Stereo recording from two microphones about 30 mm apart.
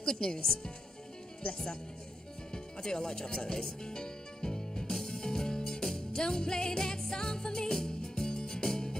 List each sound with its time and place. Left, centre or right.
0.0 s speech: left
2.5 s music: left